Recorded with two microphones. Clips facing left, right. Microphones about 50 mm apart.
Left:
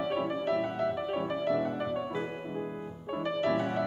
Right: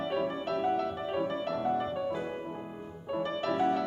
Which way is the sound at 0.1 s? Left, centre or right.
Centre.